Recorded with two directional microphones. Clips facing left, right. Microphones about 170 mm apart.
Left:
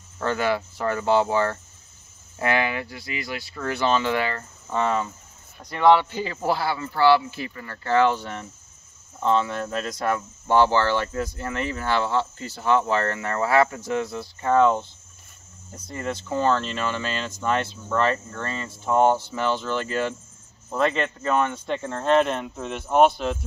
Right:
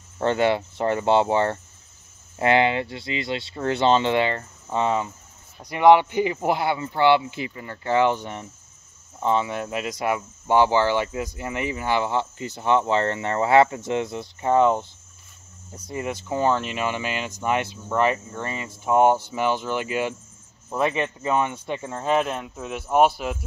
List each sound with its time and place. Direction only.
0.2 s speech: 25° right (ahead or behind); by 23.4 s 5° right (ahead or behind)